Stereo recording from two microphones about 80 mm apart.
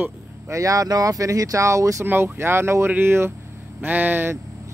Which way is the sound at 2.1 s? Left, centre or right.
Right.